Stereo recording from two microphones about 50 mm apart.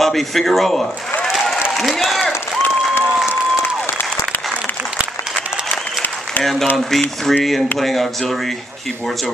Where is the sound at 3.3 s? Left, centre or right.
Left.